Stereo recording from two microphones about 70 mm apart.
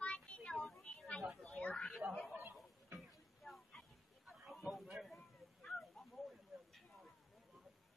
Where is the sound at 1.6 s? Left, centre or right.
Centre.